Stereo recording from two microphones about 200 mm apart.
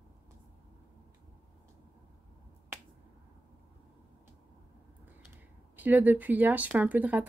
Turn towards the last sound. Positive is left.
turn(degrees=-10)  # may be behind; listen again after turning